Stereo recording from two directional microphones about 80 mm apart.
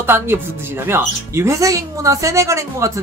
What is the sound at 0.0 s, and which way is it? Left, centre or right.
Speech, right.